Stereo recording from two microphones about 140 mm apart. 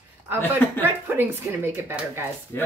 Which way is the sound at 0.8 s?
15° right (ahead or behind).